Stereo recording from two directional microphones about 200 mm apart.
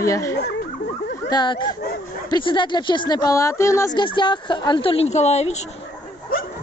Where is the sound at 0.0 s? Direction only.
15° left (ahead or behind); by 5.7 s 35° left (ahead or behind).